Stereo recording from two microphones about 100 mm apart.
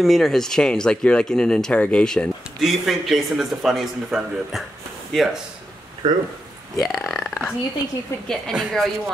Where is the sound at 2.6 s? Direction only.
Centre (ahead or behind).